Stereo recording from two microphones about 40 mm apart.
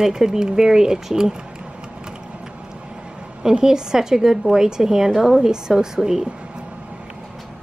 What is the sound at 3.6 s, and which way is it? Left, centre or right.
Speech, centre.